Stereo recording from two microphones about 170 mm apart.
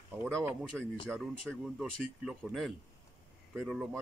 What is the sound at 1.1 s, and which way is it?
Speech, centre (ahead or behind).